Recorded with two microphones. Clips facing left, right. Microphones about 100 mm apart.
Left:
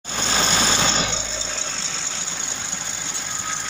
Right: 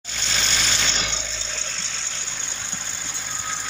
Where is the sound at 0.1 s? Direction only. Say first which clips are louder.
Left 6 dB; 45° left (ahead or behind).